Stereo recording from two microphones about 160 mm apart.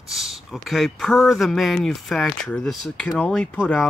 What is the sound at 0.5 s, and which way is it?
Speech, centre (ahead or behind).